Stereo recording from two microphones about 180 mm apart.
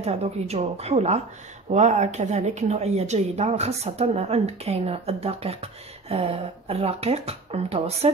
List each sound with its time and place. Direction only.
0.0 s speech: 35° right (ahead or behind)